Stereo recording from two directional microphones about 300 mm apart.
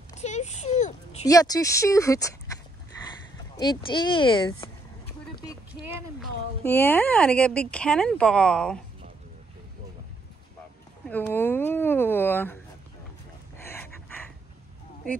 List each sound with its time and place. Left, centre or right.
0.2 s speech: left
1.2 s speech: centre
6.1 s speech: centre
11.1 s speech: centre
13.7 s a sound: centre